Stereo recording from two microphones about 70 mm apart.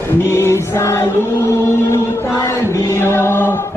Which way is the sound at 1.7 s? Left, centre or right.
Left.